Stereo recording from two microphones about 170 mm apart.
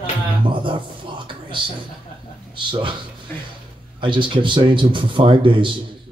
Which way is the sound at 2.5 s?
30° right (ahead or behind).